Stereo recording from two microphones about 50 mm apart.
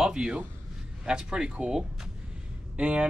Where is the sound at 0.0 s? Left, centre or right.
Centre.